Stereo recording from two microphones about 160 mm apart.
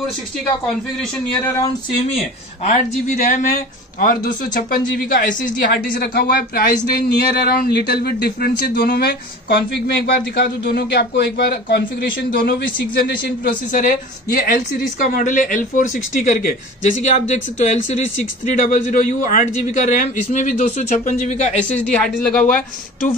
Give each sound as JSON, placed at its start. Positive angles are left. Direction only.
{"t": 2.6, "sound": "a man's voice", "side_deg": 45}
{"t": 4.0, "sound": "speech", "side_deg": 65}
{"t": 10.1, "sound": "speech", "side_deg": 85}
{"t": 14.3, "sound": "a man's voice", "side_deg": 70}
{"t": 21.7, "sound": "speech", "side_deg": 10}